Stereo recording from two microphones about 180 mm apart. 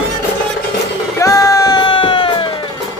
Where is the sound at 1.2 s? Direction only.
20° left (ahead or behind).